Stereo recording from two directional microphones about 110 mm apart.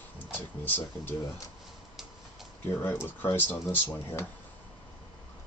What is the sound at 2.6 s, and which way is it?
Speech, 15° left (ahead or behind).